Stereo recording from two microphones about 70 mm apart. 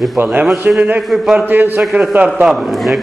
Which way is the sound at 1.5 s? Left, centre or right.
Right.